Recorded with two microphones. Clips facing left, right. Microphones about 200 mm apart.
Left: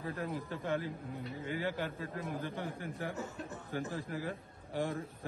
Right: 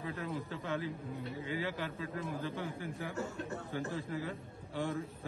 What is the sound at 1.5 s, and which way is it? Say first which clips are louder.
A man's voice: left 2 dB; 50° left (ahead or behind).